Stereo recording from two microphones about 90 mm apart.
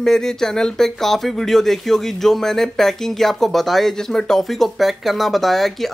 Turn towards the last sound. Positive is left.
turn(degrees=0)  # may be behind; listen again after turning